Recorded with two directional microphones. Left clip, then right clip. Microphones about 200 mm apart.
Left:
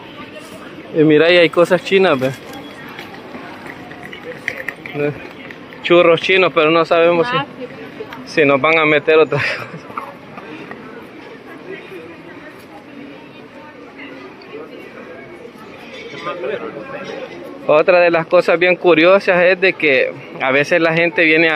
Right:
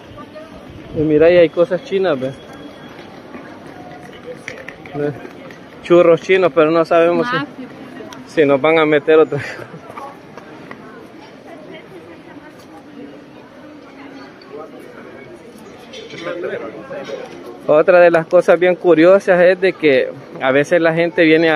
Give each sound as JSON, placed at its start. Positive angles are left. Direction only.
{"t": 1.0, "sound": "speech", "side_deg": 15}
{"t": 4.5, "sound": "a sound", "side_deg": -10}
{"t": 5.9, "sound": "speech", "side_deg": -10}
{"t": 6.8, "sound": "speech", "side_deg": -20}
{"t": 8.4, "sound": "speech", "side_deg": -10}
{"t": 16.3, "sound": "a sound", "side_deg": -65}
{"t": 17.6, "sound": "speech", "side_deg": -25}